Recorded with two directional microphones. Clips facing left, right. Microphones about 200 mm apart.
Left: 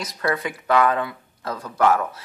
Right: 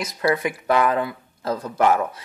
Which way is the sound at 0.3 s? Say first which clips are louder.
Right 1 dB; 20° right (ahead or behind).